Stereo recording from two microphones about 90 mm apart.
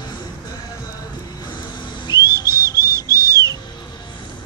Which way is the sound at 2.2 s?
30° right (ahead or behind).